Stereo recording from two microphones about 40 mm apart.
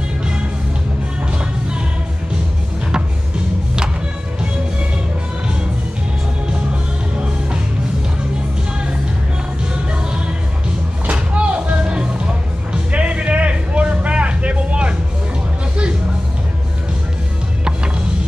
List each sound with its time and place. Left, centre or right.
6.5 s music: right
11.1 s music: right